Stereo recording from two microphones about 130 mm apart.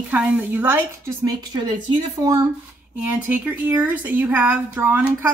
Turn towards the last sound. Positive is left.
turn(degrees=-15)  # may be behind; listen again after turning